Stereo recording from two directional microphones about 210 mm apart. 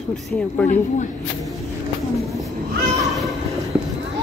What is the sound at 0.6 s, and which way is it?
Speech, 35° left (ahead or behind).